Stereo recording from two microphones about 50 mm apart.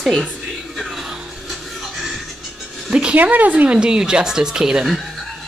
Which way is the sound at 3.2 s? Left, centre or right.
Right.